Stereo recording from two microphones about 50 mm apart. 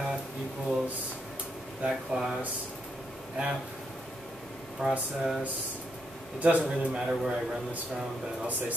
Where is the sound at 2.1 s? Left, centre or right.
Centre.